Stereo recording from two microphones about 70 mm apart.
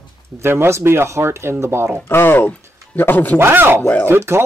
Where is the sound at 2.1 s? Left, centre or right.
Left.